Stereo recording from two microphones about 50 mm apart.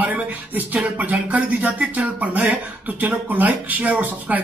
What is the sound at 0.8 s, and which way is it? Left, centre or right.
A man's voice, right.